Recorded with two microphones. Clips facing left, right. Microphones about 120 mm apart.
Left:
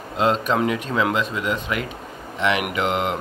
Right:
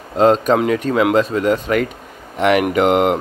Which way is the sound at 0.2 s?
40° right (ahead or behind).